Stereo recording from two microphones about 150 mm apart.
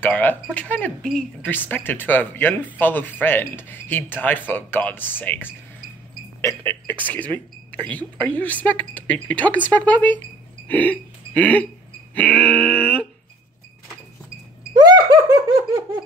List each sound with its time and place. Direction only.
0.0 s a woman's voice: 10° left (ahead or behind)
10.7 s a sound: 10° left (ahead or behind)
12.2 s a woman's voice: 10° left (ahead or behind)
14.7 s laughter: 25° right (ahead or behind)